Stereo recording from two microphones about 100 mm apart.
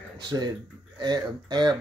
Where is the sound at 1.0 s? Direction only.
45° right (ahead or behind).